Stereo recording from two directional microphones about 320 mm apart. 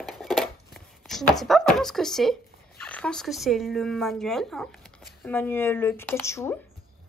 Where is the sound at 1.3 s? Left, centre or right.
Centre.